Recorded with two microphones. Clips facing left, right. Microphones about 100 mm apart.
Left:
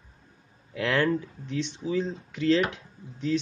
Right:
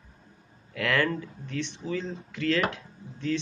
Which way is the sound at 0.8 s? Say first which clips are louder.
Left 2 dB; 20° left (ahead or behind).